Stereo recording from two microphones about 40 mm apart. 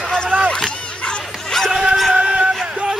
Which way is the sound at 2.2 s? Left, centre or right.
Right.